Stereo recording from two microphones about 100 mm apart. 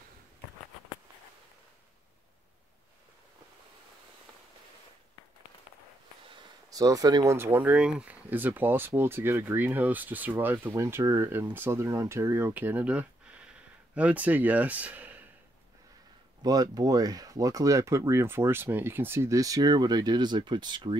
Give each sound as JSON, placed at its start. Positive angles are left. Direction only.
{"t": 6.7, "sound": "speech", "side_deg": -35}
{"t": 7.2, "sound": "speech", "side_deg": -25}
{"t": 16.4, "sound": "speech", "side_deg": -40}